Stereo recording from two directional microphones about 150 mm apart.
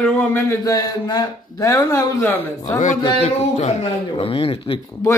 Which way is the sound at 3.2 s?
45° left (ahead or behind).